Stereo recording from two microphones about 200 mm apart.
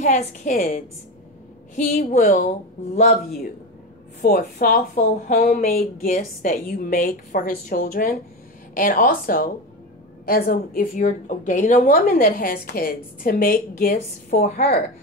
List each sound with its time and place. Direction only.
0.0 s speech: 40° left (ahead or behind)
2.0 s a woman's voice: 40° left (ahead or behind)